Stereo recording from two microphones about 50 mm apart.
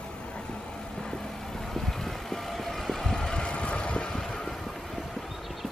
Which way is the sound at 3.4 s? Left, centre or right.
Left.